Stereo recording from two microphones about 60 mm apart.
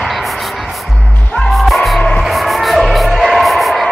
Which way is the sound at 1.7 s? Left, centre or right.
Centre.